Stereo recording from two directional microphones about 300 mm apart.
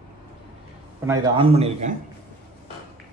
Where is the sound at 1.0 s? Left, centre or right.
Centre.